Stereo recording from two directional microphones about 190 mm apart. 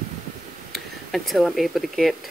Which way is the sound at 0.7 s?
Centre (ahead or behind).